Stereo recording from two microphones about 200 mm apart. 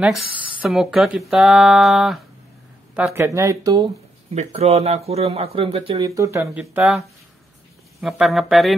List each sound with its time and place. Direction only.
0.0 s speech: 5° right (ahead or behind)
6.6 s speech: centre (ahead or behind)
8.0 s speech: centre (ahead or behind)